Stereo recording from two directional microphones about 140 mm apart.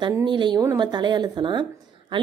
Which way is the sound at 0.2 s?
35° right (ahead or behind).